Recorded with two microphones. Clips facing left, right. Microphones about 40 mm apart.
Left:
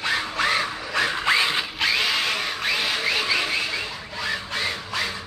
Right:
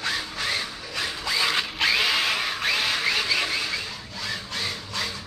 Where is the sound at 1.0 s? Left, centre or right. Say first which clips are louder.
Left 6 dB; left.